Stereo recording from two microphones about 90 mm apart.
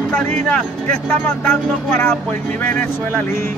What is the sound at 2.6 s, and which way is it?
Speech, 20° left (ahead or behind).